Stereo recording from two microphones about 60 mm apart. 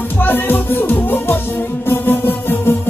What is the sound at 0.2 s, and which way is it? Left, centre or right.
Music, left.